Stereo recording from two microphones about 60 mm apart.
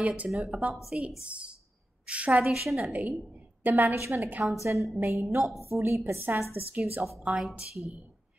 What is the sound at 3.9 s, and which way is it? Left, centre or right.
Speech, right.